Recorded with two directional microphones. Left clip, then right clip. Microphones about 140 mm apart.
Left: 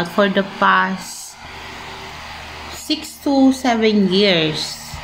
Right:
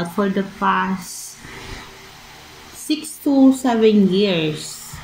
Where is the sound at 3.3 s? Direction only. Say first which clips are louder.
Even; 40° left (ahead or behind).